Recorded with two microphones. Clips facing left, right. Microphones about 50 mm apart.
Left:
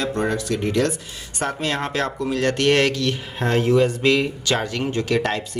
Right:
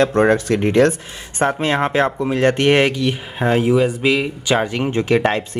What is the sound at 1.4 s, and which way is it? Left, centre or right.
Speech, right.